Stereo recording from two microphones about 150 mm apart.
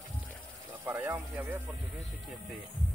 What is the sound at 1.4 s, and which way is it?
Speech, 10° right (ahead or behind).